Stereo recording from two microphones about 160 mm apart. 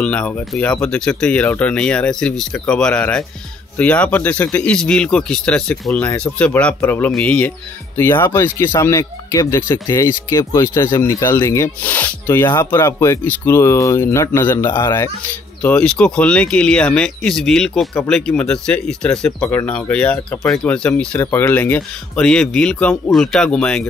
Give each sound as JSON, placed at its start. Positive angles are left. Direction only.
{"t": 0.0, "sound": "speech", "side_deg": 5}
{"t": 15.6, "sound": "speech", "side_deg": 5}